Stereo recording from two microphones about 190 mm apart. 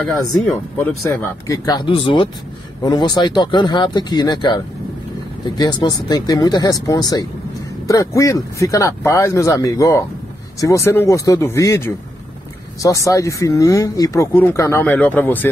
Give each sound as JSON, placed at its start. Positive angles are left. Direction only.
{"t": 0.0, "sound": "speech", "side_deg": 0}
{"t": 1.1, "sound": "speech", "side_deg": 20}